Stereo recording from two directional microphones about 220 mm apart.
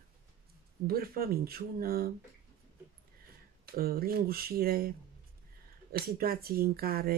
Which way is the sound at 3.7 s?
45° right (ahead or behind).